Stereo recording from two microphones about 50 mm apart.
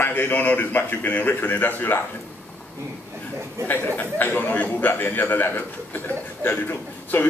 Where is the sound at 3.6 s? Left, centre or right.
Left.